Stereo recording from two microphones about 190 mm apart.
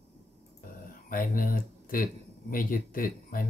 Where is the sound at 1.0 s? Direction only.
45° left (ahead or behind).